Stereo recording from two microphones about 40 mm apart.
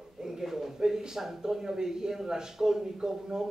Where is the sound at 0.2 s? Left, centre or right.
Centre.